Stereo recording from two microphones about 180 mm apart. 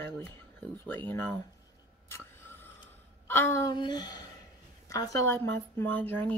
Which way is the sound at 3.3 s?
15° left (ahead or behind).